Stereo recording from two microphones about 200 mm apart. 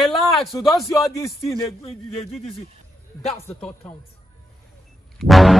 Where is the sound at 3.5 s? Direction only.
5° left (ahead or behind).